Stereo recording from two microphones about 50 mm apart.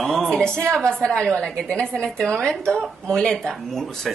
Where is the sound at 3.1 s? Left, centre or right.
Centre.